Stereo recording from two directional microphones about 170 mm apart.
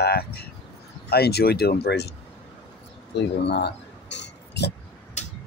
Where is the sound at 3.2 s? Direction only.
80° left.